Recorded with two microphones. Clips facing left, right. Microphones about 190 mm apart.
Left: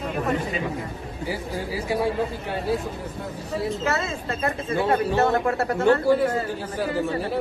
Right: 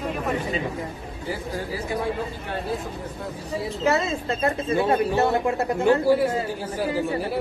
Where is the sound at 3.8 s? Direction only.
15° right (ahead or behind).